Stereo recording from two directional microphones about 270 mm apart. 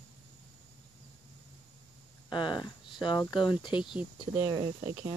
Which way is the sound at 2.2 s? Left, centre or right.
Centre.